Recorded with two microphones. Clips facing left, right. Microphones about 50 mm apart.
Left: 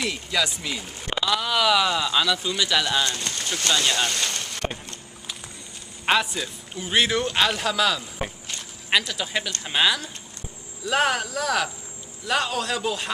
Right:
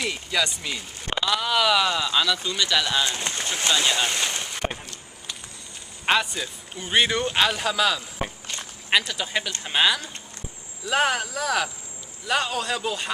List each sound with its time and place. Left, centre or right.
0.0 s speech: centre
3.0 s speech: centre
6.0 s speech: centre